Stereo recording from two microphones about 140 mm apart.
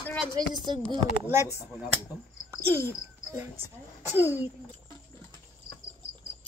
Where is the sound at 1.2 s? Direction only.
20° right (ahead or behind).